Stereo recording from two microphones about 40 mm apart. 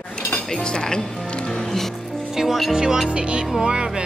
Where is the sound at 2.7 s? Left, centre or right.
Centre.